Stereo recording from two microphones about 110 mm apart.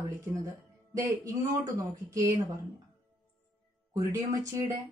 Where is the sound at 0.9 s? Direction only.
30° right (ahead or behind).